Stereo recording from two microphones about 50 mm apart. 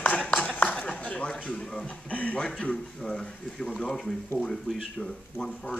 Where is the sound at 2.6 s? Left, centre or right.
Centre.